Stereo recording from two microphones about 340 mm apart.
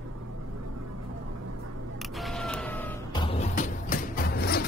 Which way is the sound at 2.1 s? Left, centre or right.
Centre.